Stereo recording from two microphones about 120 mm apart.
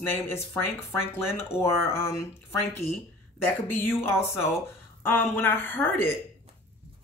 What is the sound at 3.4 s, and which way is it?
Speech, 15° left (ahead or behind).